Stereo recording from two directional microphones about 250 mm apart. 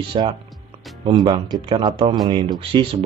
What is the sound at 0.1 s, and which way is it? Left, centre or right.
Speech, centre.